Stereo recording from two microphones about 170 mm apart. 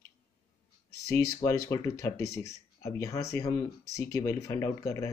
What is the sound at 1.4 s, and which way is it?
Speech, 20° left (ahead or behind).